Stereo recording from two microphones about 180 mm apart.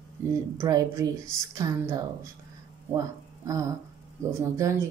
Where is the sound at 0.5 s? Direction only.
15° right (ahead or behind).